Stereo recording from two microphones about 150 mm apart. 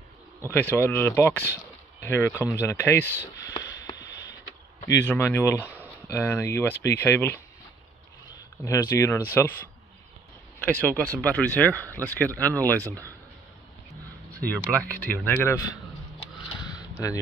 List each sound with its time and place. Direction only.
0.5 s speech: 15° left (ahead or behind)
3.4 s sniff: 30° left (ahead or behind)
4.8 s speech: 15° left (ahead or behind)
8.6 s speech: 20° left (ahead or behind)
10.6 s speech: 10° left (ahead or behind)
14.8 s speech: 10° left (ahead or behind)
16.4 s a sound: 25° left (ahead or behind)